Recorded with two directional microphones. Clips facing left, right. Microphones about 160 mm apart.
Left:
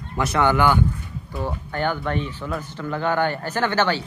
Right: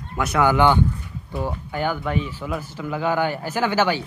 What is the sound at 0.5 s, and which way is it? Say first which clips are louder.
Speech: right 2 dB; 20° right (ahead or behind).